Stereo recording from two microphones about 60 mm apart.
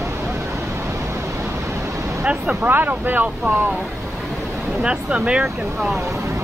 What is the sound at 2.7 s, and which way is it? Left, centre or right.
Speech, right.